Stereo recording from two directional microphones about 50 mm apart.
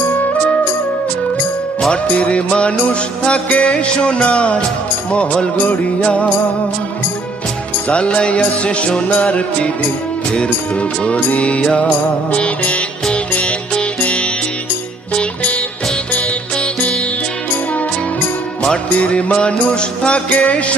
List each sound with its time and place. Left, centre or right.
1.9 s music: left
7.9 s music: left
11.1 s music: left
12.3 s mantra: left
13.1 s music: left
18.6 s music: left